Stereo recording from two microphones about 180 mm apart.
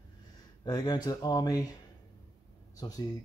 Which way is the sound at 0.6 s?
25° left (ahead or behind).